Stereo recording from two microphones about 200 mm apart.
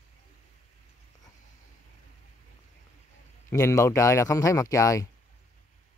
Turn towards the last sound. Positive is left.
turn(degrees=15)  # may be behind; listen again after turning